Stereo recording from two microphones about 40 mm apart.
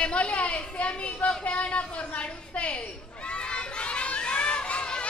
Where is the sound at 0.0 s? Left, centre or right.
Left.